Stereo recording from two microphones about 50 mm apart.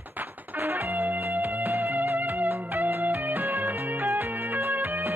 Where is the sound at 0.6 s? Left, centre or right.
Right.